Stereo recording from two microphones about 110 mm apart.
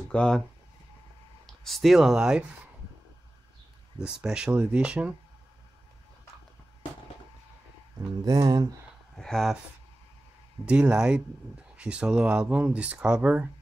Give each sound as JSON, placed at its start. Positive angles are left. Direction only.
{"t": 0.1, "sound": "speech", "side_deg": 10}
{"t": 1.4, "sound": "speech", "side_deg": 0}
{"t": 4.0, "sound": "speech", "side_deg": -10}
{"t": 8.2, "sound": "speech", "side_deg": -35}
{"t": 9.1, "sound": "speech", "side_deg": 5}
{"t": 10.6, "sound": "speech", "side_deg": -10}